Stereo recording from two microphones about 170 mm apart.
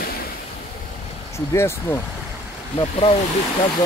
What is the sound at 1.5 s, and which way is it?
Speech, 15° left (ahead or behind).